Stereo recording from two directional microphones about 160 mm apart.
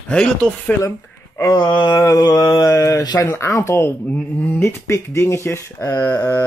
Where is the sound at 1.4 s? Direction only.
25° left (ahead or behind).